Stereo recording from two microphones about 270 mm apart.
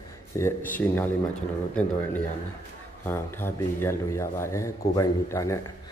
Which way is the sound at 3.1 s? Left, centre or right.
Centre.